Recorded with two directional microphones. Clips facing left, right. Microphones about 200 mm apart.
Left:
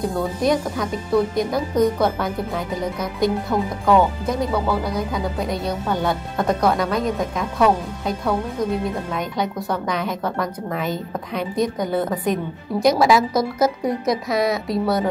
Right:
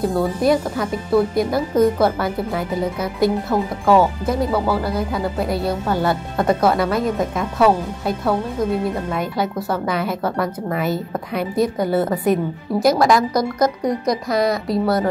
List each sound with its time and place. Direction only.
0.0 s a woman's voice: 5° right (ahead or behind)